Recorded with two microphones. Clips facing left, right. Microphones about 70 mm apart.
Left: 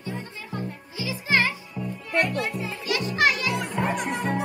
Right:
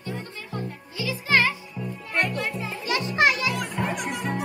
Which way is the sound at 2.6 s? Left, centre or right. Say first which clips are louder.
Even; right.